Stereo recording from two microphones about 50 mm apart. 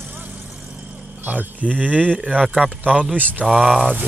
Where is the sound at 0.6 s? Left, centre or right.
Centre.